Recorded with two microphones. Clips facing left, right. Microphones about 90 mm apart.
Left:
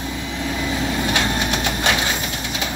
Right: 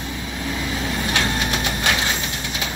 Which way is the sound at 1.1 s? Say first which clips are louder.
Left 1 dB; 25° left (ahead or behind).